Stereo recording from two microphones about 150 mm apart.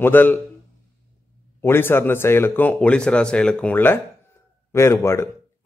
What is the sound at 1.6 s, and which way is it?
Speech, 15° left (ahead or behind).